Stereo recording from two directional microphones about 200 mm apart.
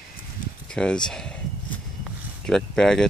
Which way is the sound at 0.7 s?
5° left (ahead or behind).